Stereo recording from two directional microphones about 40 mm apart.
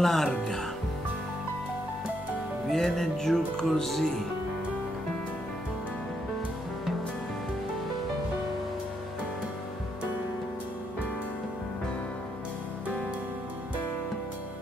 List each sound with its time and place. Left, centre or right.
0.0 s speech: centre
2.7 s speech: centre